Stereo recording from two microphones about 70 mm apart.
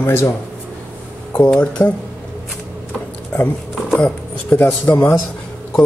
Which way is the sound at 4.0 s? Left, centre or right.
Left.